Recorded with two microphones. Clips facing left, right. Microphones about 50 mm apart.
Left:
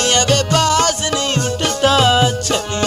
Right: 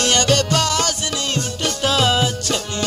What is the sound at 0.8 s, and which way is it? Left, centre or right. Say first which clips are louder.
Music: left 6 dB; left.